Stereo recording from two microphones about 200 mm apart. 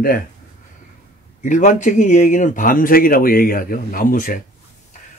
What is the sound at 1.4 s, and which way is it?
Speech, 40° left (ahead or behind).